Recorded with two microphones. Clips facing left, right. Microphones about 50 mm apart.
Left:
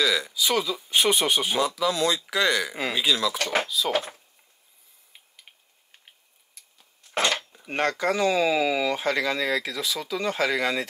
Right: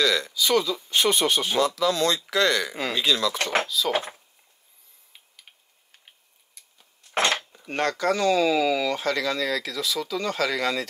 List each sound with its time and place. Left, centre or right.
0.0 s speech: centre
3.9 s speech: right
7.3 s cutlery: centre
7.7 s speech: centre